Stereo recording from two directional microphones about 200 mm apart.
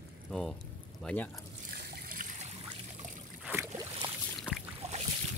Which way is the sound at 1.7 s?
50° right (ahead or behind).